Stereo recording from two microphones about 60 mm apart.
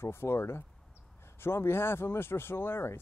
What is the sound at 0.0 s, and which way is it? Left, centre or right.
A man's voice, left.